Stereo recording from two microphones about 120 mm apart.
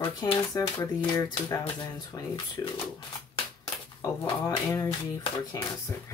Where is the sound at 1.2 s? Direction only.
30° left (ahead or behind).